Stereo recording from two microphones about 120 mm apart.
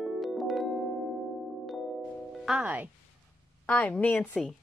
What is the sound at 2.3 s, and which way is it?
Speech, 5° right (ahead or behind).